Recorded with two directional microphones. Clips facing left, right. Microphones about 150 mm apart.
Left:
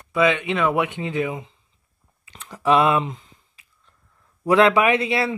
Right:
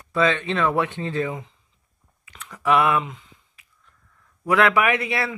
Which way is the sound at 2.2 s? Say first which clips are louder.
Left 2 dB; 30° left (ahead or behind).